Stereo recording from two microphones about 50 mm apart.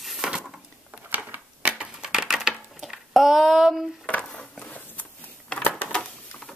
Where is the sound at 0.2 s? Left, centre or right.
Right.